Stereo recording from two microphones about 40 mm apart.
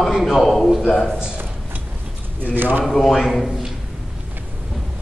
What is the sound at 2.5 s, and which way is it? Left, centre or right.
Speech, right.